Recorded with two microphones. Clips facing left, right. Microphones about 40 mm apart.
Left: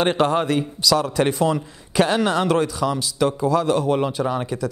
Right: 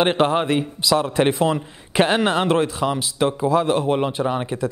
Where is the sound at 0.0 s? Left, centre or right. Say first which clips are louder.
Right 1 dB; right.